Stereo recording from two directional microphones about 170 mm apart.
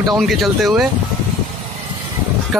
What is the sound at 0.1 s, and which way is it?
Speech, centre (ahead or behind).